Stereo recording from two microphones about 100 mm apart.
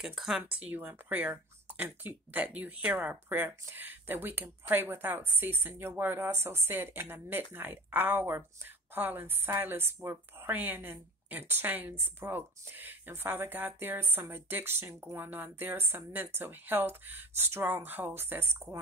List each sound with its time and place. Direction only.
0.0 s speech: 5° right (ahead or behind)
0.4 s a woman's voice: 15° right (ahead or behind)